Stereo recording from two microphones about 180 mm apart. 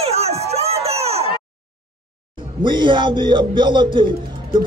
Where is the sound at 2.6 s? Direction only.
25° right (ahead or behind).